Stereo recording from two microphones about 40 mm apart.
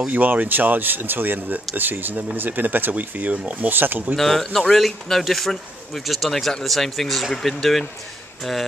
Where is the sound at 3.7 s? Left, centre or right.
Right.